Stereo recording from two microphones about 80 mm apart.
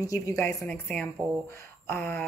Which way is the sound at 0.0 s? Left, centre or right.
Left.